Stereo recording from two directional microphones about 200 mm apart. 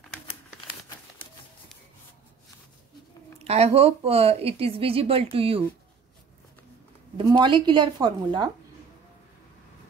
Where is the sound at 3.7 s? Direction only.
30° right (ahead or behind).